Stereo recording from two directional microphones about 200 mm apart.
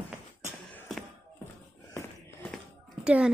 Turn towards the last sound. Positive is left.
turn(degrees=-5)  # may be behind; listen again after turning